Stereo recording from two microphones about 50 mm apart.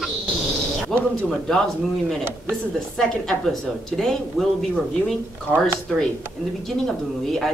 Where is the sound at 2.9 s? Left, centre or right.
Centre.